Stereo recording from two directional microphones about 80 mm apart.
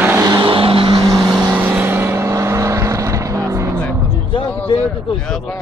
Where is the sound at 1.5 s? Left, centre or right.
Right.